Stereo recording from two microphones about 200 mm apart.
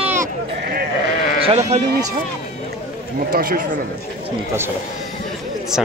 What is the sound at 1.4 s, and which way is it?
Speech, 25° right (ahead or behind).